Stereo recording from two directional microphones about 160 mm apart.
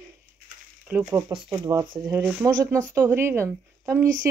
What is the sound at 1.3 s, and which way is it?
Speech, 30° right (ahead or behind).